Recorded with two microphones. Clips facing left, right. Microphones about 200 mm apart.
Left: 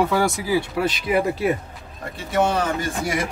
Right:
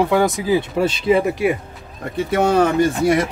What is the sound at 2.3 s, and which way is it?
Speech, 60° right (ahead or behind).